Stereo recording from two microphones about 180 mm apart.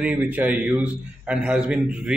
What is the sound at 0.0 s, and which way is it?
A man's voice, 10° right (ahead or behind).